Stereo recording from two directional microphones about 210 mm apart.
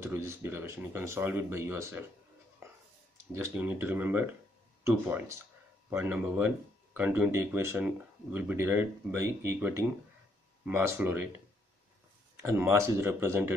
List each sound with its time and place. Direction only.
0.0 s speech: 10° right (ahead or behind)
3.3 s speech: 10° right (ahead or behind)
12.4 s speech: 10° right (ahead or behind)